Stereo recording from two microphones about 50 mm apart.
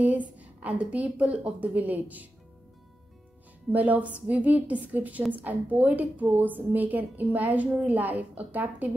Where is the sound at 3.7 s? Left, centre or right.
Right.